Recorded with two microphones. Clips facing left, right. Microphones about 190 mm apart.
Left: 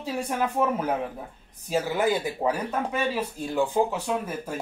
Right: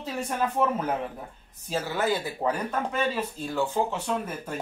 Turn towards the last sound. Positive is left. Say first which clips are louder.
# left 1 dB
turn(degrees=10)  # may be behind; listen again after turning